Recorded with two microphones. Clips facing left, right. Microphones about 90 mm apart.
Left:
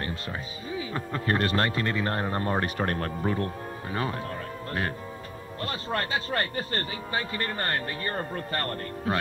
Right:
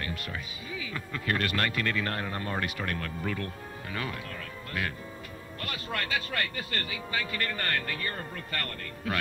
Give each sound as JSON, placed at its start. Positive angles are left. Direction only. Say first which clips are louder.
{"t": 0.0, "sound": "speech", "louder": "left 3 dB", "side_deg": 30}
{"t": 5.6, "sound": "speech", "louder": "left 5 dB", "side_deg": 30}